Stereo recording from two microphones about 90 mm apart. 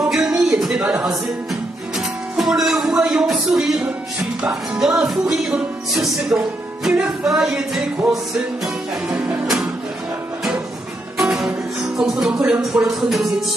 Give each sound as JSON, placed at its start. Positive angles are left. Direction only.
{"t": 0.1, "sound": "a sound", "side_deg": -5}
{"t": 0.9, "sound": "music", "side_deg": -5}
{"t": 4.4, "sound": "speech", "side_deg": -10}
{"t": 6.3, "sound": "speech", "side_deg": -15}
{"t": 6.8, "sound": "music", "side_deg": -5}
{"t": 9.1, "sound": "speech", "side_deg": -10}
{"t": 11.1, "sound": "music", "side_deg": -5}
{"t": 12.0, "sound": "speech", "side_deg": -5}
{"t": 12.4, "sound": "music", "side_deg": -5}